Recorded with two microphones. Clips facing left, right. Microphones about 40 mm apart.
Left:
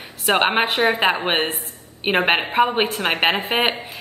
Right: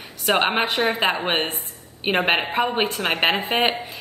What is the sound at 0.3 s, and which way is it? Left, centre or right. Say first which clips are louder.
A woman's voice: left 2 dB; centre.